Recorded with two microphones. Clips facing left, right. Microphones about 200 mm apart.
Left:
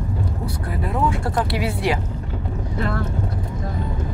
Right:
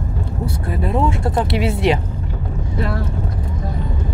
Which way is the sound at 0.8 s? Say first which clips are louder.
Right 3 dB; 25° right (ahead or behind).